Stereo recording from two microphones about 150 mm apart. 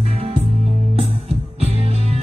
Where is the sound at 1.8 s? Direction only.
40° right (ahead or behind).